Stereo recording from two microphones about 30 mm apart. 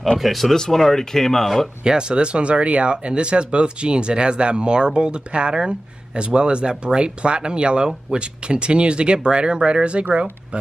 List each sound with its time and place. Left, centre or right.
0.2 s speech: centre
0.7 s speech: centre
1.9 s speech: right